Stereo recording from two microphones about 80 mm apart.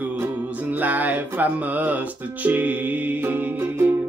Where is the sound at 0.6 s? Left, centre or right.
Right.